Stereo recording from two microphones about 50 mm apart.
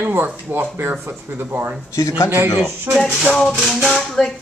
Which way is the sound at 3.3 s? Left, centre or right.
Centre.